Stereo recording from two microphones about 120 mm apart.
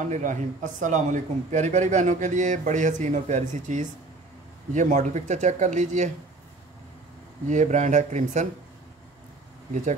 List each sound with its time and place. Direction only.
0.0 s a man's voice: 90° right
7.4 s a man's voice: 90° right